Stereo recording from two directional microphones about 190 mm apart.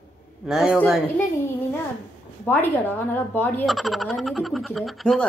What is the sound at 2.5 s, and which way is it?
Speech, 10° left (ahead or behind).